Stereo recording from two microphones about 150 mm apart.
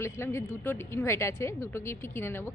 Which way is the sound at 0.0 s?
15° left (ahead or behind).